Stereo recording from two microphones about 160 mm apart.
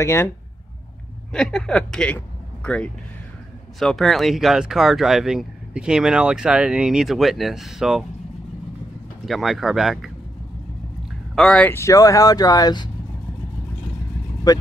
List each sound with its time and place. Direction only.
0.0 s speech: 15° left (ahead or behind)
1.3 s speech: 5° left (ahead or behind)
2.1 s a sound: 5° left (ahead or behind)
3.8 s speech: centre (ahead or behind)
9.2 s speech: centre (ahead or behind)
11.3 s speech: 5° left (ahead or behind); by 12.9 s 25° left (ahead or behind)
14.5 s speech: 25° left (ahead or behind)